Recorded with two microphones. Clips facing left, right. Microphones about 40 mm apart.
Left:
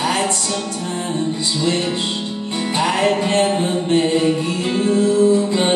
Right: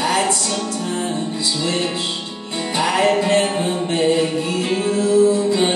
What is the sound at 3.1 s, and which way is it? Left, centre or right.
Music, left.